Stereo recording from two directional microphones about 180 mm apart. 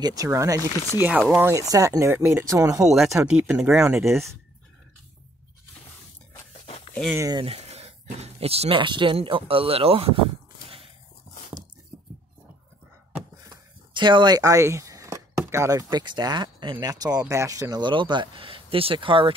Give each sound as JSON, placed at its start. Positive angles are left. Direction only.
{"t": 0.0, "sound": "speech", "side_deg": -20}
{"t": 2.8, "sound": "speech", "side_deg": 0}
{"t": 3.1, "sound": "speech", "side_deg": -15}
{"t": 6.9, "sound": "a sound", "side_deg": 5}
{"t": 7.2, "sound": "speech", "side_deg": -20}
{"t": 7.4, "sound": "speech", "side_deg": -35}
{"t": 13.5, "sound": "speech", "side_deg": -25}